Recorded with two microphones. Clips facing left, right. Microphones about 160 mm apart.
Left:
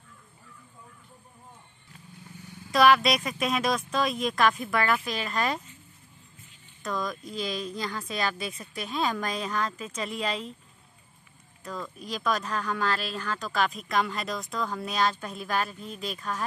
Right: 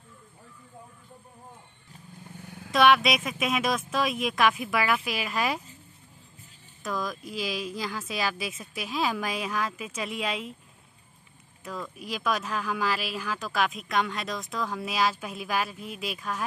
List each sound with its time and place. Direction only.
2.4 s vehicle: 55° right (ahead or behind)
2.7 s speech: centre (ahead or behind)
6.8 s speech: centre (ahead or behind)
11.6 s speech: 5° right (ahead or behind)